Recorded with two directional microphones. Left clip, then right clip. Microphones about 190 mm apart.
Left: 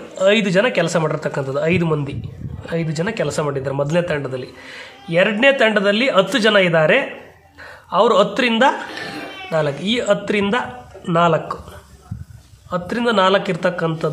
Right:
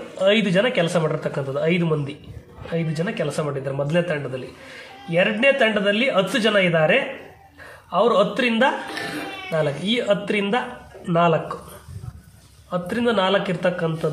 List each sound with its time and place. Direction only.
0.2 s a man's voice: 20° left (ahead or behind)
12.6 s speech: 25° left (ahead or behind)